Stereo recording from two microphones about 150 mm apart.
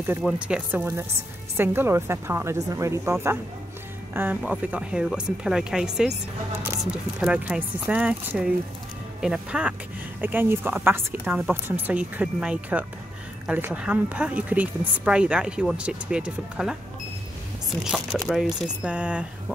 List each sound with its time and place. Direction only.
0.2 s a woman's voice: 5° right (ahead or behind)